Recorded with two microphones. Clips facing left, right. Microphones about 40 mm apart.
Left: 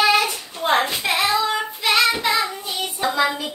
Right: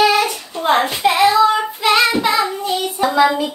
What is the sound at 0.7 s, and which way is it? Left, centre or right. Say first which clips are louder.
Child singing: right 4 dB; centre.